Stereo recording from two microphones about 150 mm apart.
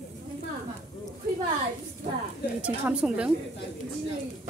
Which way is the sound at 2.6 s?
5° right (ahead or behind).